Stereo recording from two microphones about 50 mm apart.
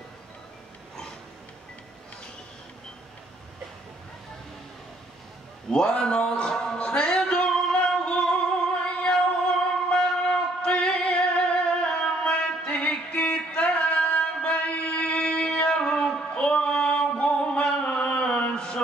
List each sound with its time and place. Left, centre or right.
5.7 s speech: centre
6.5 s music: centre
13.5 s a sound: left